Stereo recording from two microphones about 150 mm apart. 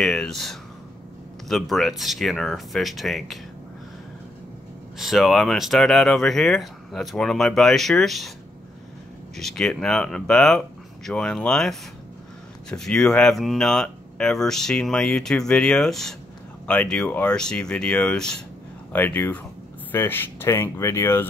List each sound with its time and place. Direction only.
0.0 s speech: 5° left (ahead or behind)
4.9 s speech: centre (ahead or behind)
9.4 s speech: 5° left (ahead or behind)